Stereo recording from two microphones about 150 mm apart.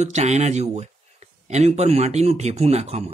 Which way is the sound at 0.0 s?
50° right (ahead or behind).